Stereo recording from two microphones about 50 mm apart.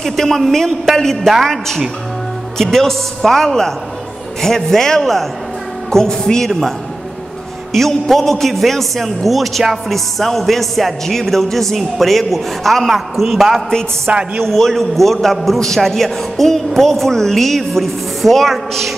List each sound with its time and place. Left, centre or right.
0.0 s a man's voice: centre
7.7 s a man's voice: centre
14.1 s a woman's voice: right
14.4 s a man's voice: centre